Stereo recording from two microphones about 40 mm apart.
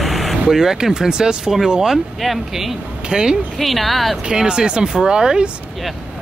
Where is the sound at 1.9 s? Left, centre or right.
Centre.